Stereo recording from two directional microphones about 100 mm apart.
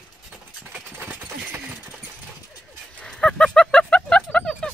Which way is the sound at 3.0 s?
5° left (ahead or behind).